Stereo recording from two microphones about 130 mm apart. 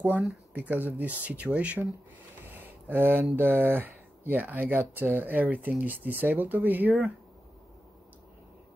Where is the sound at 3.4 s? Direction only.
15° right (ahead or behind).